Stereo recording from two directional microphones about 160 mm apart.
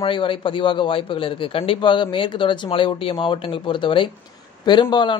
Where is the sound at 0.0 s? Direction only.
30° left (ahead or behind).